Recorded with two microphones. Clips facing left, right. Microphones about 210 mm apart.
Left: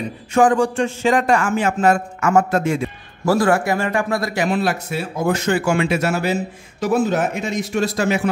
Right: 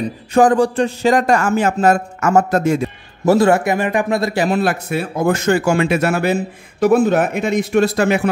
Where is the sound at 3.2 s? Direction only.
25° right (ahead or behind).